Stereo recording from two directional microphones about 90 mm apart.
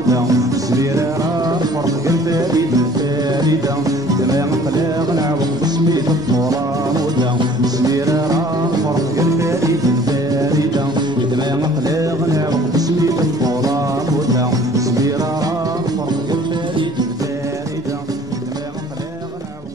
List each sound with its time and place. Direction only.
0.1 s music: 40° right (ahead or behind)